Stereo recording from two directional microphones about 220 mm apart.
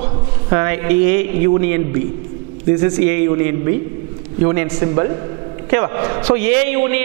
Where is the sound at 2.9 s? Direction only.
15° right (ahead or behind).